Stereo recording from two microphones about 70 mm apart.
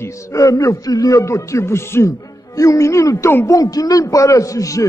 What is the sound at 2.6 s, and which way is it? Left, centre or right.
Speech, left.